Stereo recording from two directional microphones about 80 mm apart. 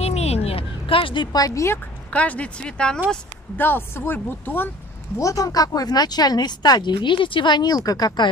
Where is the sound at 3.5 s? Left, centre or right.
Left.